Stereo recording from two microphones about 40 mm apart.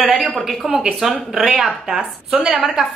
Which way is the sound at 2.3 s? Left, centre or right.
Right.